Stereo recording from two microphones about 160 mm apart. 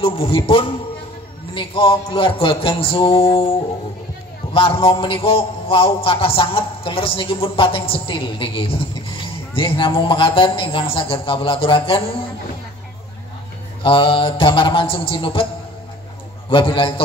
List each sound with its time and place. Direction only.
0.0 s a man's voice: 30° left (ahead or behind)
4.6 s a man's voice: 35° left (ahead or behind)
13.8 s a man's voice: 35° left (ahead or behind)
16.4 s a man's voice: 35° left (ahead or behind)